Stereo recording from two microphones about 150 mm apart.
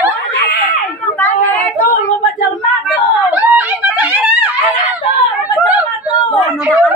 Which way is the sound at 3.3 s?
10° right (ahead or behind).